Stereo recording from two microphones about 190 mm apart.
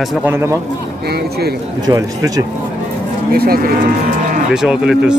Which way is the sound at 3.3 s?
50° right (ahead or behind).